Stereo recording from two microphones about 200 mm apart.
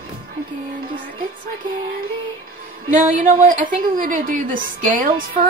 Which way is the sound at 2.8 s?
40° right (ahead or behind).